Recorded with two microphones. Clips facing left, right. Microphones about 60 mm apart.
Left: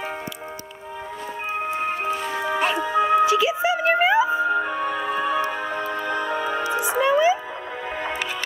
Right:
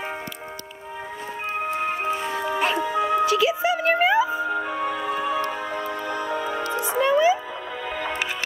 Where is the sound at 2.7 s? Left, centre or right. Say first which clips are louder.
Left 3 dB; left.